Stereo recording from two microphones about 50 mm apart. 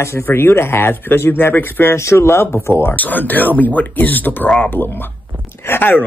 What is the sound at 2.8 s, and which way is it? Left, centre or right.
Speech, left.